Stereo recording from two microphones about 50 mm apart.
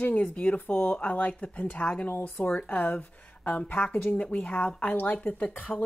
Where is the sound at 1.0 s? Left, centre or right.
Left.